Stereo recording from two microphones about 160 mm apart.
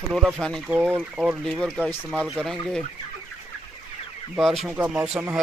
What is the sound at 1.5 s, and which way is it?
Speech, 5° left (ahead or behind).